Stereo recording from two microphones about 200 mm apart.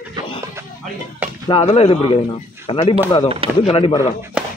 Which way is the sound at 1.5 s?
30° left (ahead or behind).